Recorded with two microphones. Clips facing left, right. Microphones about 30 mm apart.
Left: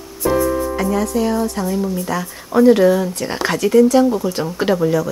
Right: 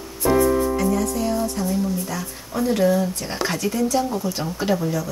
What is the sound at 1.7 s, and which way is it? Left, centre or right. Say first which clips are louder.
Speech: left 4 dB; left.